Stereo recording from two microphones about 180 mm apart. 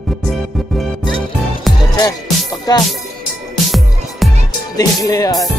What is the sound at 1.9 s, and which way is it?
Music, 20° left (ahead or behind).